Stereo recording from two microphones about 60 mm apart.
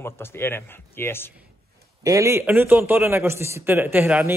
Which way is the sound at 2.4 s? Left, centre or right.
Right.